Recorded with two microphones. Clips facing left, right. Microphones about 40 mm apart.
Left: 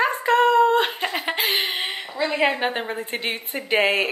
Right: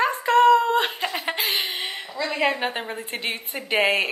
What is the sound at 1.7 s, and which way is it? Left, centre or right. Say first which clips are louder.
A woman's voice: left 3 dB; left.